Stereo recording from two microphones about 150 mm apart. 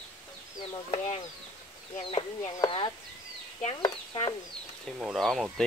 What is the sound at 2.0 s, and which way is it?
Speech, 35° left (ahead or behind).